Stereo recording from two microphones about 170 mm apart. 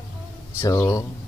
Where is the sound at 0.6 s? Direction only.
20° left (ahead or behind).